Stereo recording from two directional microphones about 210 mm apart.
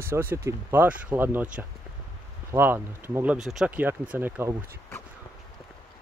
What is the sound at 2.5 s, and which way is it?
Speech, 10° right (ahead or behind).